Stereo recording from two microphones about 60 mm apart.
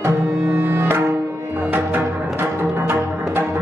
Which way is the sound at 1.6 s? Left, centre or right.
Right.